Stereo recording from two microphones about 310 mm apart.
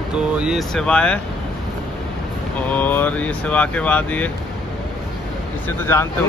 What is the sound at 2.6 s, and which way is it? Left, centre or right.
Speech, centre.